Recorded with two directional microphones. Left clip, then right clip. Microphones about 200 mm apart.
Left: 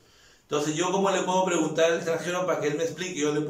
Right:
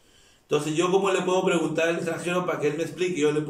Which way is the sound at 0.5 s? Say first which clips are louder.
Right 3 dB; 10° right (ahead or behind).